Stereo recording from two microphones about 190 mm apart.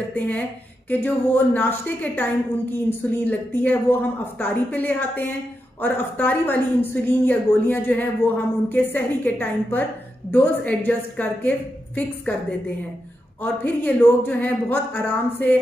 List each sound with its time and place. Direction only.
0.1 s a woman's voice: 10° left (ahead or behind)